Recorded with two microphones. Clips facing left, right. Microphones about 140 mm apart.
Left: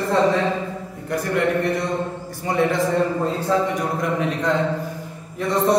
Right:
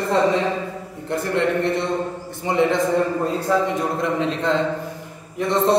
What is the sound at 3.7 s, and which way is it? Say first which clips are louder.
Speech: right 1 dB; 25° right (ahead or behind).